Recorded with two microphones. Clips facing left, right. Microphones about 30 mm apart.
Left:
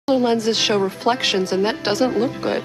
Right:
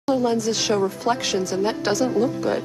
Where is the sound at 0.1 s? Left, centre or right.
Left.